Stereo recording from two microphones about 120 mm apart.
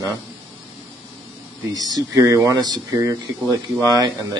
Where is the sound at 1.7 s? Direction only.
30° right (ahead or behind).